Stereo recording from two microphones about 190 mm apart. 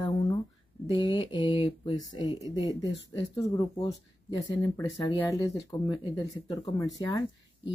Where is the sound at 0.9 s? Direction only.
25° left (ahead or behind).